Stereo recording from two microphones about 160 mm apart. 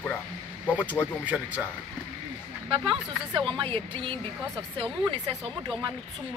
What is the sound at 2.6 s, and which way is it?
Speech, 35° right (ahead or behind).